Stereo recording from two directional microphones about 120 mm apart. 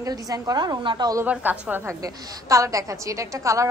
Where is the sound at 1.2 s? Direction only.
15° right (ahead or behind).